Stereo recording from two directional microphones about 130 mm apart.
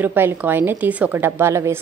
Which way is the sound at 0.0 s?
15° right (ahead or behind).